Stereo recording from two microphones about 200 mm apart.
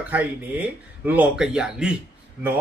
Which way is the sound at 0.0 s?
5° right (ahead or behind).